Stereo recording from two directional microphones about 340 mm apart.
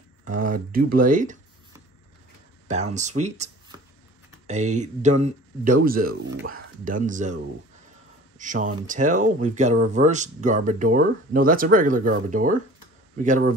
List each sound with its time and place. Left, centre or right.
0.3 s speech: right
2.7 s speech: right
4.5 s speech: right
8.4 s speech: right